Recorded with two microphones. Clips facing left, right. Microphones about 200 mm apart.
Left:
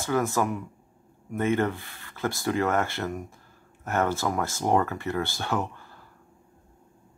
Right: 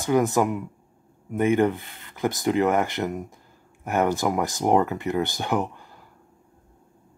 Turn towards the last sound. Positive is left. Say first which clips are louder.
# right 4 dB
turn(degrees=-15)  # may be behind; listen again after turning